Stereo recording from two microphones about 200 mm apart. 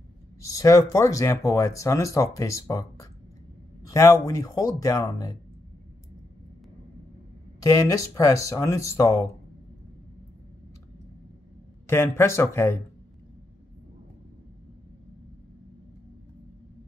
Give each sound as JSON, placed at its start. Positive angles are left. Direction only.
{"t": 0.4, "sound": "speech", "side_deg": 15}
{"t": 7.6, "sound": "speech", "side_deg": 20}
{"t": 11.9, "sound": "speech", "side_deg": 15}